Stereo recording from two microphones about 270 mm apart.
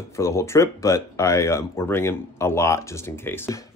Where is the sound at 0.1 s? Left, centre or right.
Centre.